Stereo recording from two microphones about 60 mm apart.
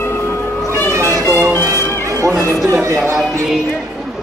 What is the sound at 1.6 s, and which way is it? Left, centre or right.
Music, right.